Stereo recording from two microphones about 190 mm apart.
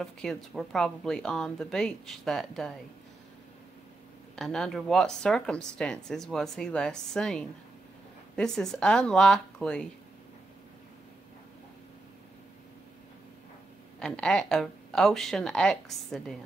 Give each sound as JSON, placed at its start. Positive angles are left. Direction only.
{"t": 0.0, "sound": "a woman's voice", "side_deg": 0}
{"t": 4.4, "sound": "a woman's voice", "side_deg": 0}
{"t": 13.9, "sound": "a woman's voice", "side_deg": 5}